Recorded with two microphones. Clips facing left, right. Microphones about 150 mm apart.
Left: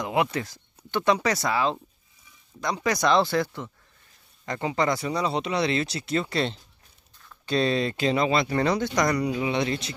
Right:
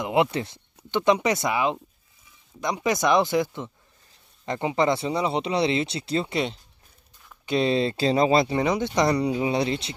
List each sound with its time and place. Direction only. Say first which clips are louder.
0.0 s speech: right 3 dB; 25° right (ahead or behind)
6.3 s speech: even; 10° right (ahead or behind); by 8.5 s 35° right (ahead or behind)
8.5 s speech: even; 20° right (ahead or behind)